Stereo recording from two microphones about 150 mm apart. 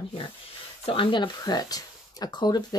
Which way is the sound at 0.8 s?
35° left (ahead or behind).